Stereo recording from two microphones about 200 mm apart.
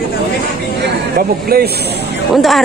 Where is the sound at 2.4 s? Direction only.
Centre (ahead or behind).